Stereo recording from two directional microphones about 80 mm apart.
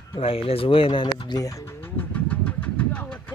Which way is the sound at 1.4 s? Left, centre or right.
Left.